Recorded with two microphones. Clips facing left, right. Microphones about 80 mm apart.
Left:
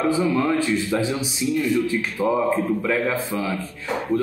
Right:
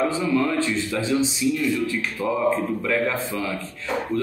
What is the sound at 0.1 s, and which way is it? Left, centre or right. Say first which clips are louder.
Speech: left 2 dB; centre.